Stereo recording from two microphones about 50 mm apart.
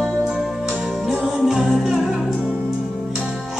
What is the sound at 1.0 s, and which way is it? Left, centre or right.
Music, centre.